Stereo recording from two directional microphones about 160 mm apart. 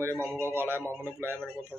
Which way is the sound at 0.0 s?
15° right (ahead or behind).